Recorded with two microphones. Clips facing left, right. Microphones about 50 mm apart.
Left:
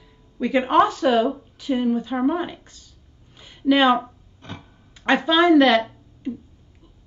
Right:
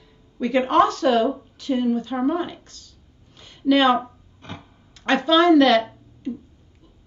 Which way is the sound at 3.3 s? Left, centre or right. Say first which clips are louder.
Even; centre.